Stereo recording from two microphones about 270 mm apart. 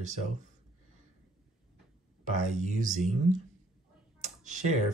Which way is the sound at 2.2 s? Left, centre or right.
Right.